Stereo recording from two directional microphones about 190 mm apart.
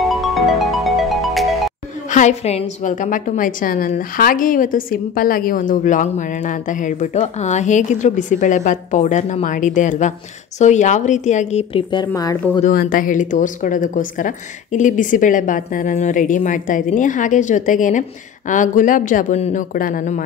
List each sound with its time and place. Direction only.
0.0 s music: centre (ahead or behind)
2.0 s a woman's voice: 40° left (ahead or behind); by 12.4 s 20° left (ahead or behind)
12.6 s a woman's voice: 45° left (ahead or behind)